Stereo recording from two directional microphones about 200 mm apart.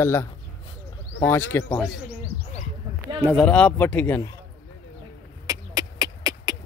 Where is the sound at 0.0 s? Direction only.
10° left (ahead or behind).